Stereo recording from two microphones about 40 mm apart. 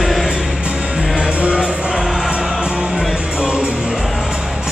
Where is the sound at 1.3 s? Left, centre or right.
Right.